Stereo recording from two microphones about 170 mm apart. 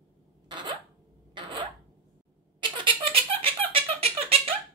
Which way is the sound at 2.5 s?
30° right (ahead or behind).